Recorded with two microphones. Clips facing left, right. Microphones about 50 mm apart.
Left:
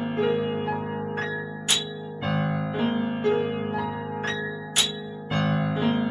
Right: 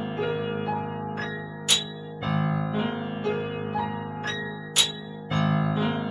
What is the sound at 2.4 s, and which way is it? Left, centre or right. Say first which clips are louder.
Music: even; left.